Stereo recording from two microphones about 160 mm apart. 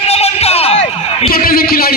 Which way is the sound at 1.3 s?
65° left (ahead or behind).